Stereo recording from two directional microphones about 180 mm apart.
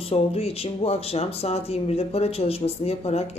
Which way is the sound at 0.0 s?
35° left (ahead or behind).